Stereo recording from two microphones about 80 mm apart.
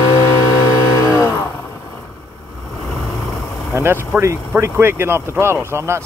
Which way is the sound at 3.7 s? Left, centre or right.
Right.